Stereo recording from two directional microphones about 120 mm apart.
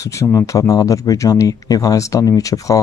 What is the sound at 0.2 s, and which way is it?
Speech, 25° left (ahead or behind).